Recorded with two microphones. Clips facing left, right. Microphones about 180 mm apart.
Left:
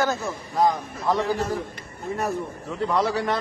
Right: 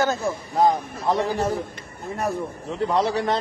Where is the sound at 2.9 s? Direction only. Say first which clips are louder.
Right 1 dB; 25° right (ahead or behind).